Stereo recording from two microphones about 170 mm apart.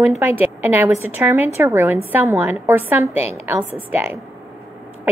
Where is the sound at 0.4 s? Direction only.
10° right (ahead or behind).